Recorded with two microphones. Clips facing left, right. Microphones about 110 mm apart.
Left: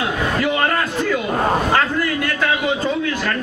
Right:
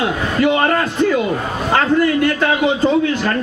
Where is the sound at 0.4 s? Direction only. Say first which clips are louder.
Right 6 dB; 25° right (ahead or behind).